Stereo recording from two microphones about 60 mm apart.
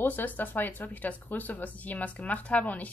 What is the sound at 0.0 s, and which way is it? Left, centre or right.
Speech, left.